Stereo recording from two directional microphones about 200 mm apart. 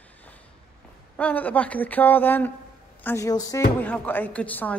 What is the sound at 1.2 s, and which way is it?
A woman's voice, 10° left (ahead or behind).